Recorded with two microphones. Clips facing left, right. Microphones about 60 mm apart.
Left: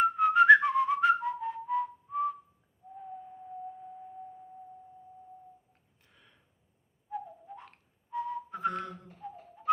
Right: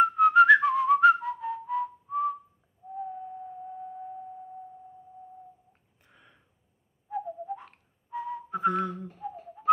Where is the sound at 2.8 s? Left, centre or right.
Centre.